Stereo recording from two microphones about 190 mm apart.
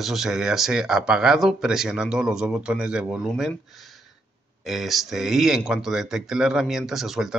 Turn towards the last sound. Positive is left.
turn(degrees=0)  # may be behind; listen again after turning